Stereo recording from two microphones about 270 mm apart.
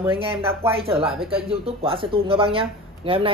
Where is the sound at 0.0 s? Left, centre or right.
Centre.